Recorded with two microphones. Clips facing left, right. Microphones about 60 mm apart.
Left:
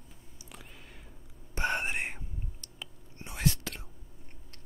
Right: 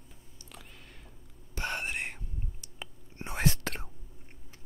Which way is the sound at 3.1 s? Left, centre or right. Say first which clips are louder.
Right 1 dB; right.